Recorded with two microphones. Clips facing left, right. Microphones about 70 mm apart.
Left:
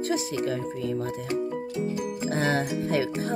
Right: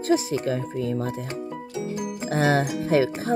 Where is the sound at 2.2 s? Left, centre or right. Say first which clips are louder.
Right 4 dB; right.